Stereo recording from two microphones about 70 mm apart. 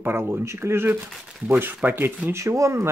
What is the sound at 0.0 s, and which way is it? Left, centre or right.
Speech, right.